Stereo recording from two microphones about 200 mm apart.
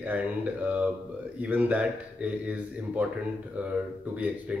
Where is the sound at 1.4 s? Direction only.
10° right (ahead or behind).